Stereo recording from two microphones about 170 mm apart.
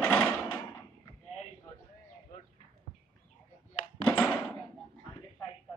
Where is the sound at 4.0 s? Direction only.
5° left (ahead or behind).